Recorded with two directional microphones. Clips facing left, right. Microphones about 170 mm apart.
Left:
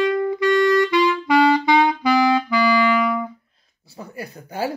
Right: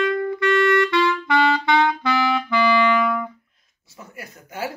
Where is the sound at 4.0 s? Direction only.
35° left (ahead or behind).